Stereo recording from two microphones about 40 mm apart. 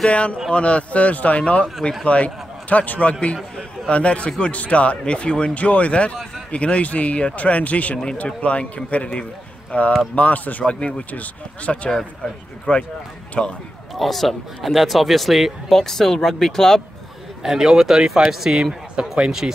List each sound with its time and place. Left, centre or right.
0.1 s a man's voice: left
10.7 s speech: left
13.4 s speech: left
13.9 s speech: centre
15.7 s speech: centre
17.4 s speech: centre